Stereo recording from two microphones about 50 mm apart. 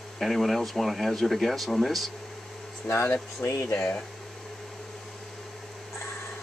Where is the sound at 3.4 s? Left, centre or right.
Left.